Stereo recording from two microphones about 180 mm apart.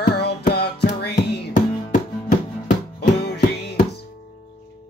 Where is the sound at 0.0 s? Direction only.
65° left (ahead or behind).